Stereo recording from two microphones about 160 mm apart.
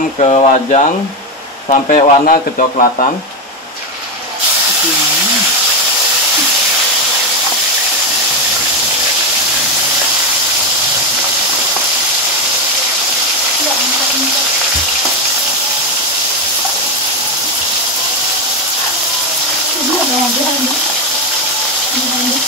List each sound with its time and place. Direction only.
0.2 s speech: 40° left (ahead or behind)